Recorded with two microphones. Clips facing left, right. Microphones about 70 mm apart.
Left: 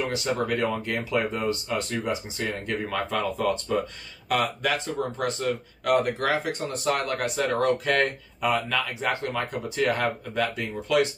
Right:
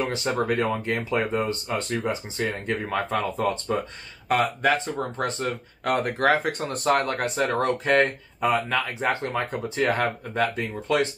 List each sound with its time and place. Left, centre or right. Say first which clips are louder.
0.1 s speech: right 2 dB; right